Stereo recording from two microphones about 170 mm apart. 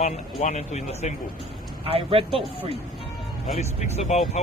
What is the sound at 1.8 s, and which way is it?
Speech, 35° right (ahead or behind).